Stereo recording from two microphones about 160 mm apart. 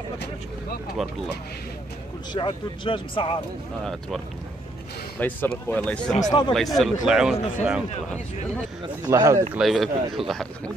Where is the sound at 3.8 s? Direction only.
Centre (ahead or behind).